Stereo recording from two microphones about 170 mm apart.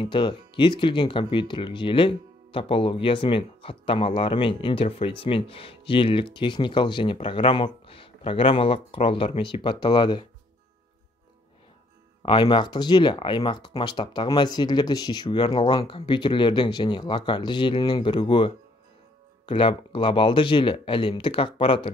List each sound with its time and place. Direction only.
0.0 s speech: 30° left (ahead or behind)
12.2 s speech: 30° left (ahead or behind)